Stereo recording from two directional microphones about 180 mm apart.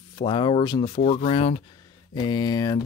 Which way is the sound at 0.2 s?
30° left (ahead or behind).